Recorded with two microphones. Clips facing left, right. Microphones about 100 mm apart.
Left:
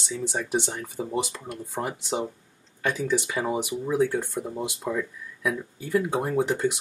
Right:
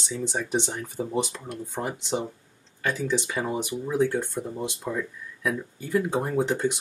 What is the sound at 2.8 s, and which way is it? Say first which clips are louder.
Speech: left 1 dB; 15° left (ahead or behind).